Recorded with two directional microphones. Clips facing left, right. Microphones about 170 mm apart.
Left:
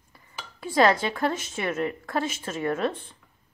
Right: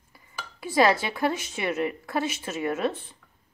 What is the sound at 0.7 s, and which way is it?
A woman's voice, 5° right (ahead or behind).